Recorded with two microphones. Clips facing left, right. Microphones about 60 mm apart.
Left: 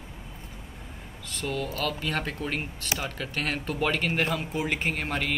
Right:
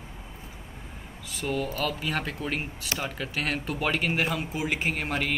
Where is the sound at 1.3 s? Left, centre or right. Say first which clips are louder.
Right 2 dB; centre.